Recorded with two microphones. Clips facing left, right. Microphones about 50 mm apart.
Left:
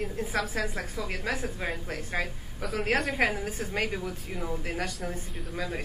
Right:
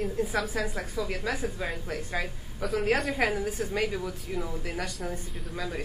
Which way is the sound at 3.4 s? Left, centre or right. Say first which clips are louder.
Right 2 dB; left.